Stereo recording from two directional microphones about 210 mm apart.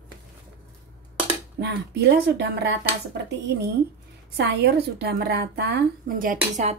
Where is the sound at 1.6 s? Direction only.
50° right (ahead or behind).